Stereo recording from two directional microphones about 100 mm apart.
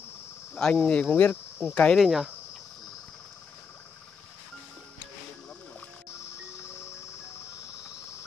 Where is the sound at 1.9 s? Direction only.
5° right (ahead or behind).